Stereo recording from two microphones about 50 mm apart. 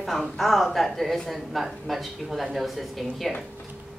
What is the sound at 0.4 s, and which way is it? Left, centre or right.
A woman's voice, centre.